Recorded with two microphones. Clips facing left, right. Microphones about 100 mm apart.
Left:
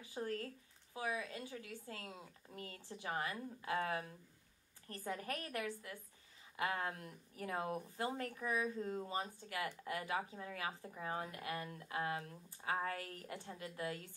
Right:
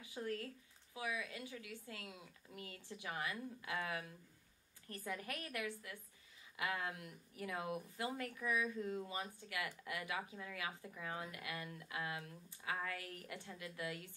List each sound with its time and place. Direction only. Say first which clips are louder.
0.1 s speech: left 1 dB; 35° left (ahead or behind)